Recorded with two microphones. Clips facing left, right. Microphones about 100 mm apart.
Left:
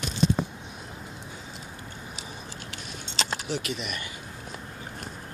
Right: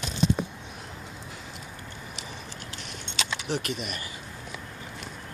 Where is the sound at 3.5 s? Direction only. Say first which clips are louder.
Right 1 dB; 50° right (ahead or behind).